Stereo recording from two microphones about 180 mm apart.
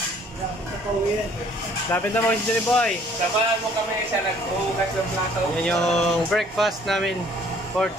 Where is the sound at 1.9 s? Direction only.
10° left (ahead or behind).